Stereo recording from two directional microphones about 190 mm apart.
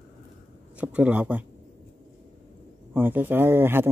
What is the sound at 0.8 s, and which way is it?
Speech, 5° right (ahead or behind).